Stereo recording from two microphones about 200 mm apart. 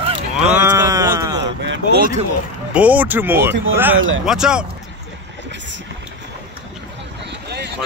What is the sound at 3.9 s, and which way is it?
Speech, 75° right (ahead or behind).